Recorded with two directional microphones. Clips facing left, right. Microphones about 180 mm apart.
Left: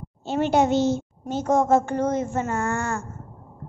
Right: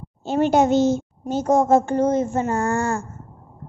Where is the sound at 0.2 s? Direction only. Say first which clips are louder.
Right 3 dB; 45° right (ahead or behind).